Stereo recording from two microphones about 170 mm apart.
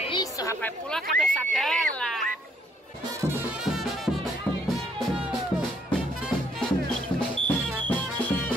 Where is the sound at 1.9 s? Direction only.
5° left (ahead or behind).